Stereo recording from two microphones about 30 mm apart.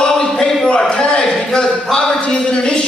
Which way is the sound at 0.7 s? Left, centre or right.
Left.